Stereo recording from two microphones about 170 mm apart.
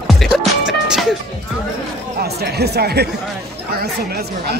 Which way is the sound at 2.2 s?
70° right (ahead or behind).